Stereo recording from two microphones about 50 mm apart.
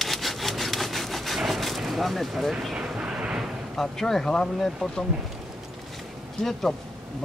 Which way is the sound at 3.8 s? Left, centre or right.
Centre.